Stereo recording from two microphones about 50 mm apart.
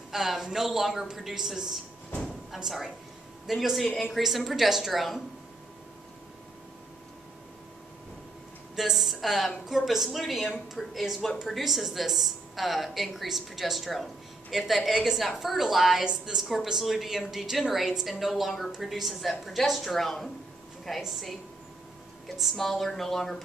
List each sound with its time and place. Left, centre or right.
0.1 s a woman's voice: centre
8.7 s a woman's voice: centre
16.0 s a woman's voice: centre
22.4 s a woman's voice: centre